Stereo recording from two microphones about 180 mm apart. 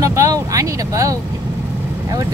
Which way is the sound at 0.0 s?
15° right (ahead or behind).